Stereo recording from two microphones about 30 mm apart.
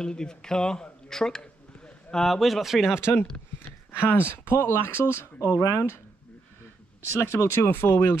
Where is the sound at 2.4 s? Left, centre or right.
Centre.